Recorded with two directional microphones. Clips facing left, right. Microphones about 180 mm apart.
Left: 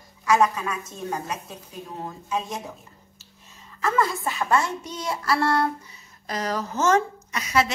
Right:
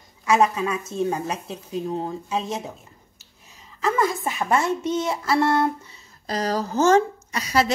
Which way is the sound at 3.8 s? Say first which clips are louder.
Right 2 dB; 20° right (ahead or behind).